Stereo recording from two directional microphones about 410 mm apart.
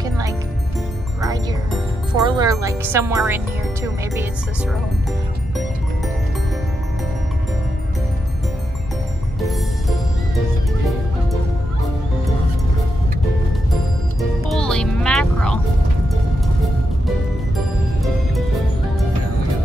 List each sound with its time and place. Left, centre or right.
1.2 s music: centre
2.2 s speech: centre
14.5 s music: centre